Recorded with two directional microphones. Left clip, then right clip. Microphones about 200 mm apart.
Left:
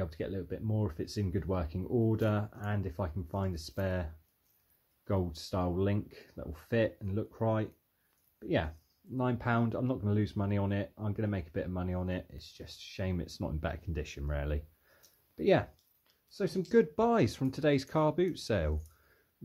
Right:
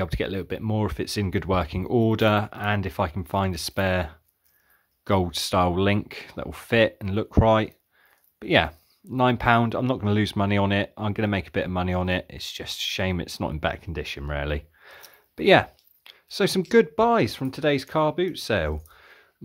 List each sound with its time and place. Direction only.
0.0 s speech: 30° right (ahead or behind)
16.9 s speech: 15° right (ahead or behind)